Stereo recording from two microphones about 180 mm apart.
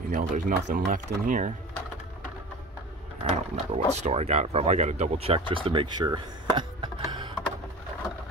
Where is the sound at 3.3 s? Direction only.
40° right (ahead or behind).